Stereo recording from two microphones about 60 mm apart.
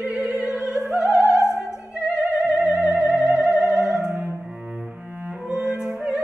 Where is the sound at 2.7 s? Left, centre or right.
Centre.